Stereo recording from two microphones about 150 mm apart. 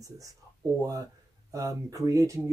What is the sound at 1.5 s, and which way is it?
Speech, 20° right (ahead or behind).